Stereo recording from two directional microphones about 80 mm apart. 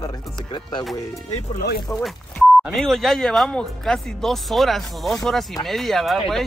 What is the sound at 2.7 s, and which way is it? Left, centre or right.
Speech, centre.